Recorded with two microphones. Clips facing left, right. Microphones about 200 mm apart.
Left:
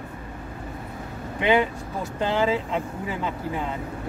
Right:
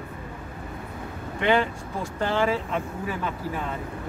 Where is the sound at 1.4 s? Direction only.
15° left (ahead or behind).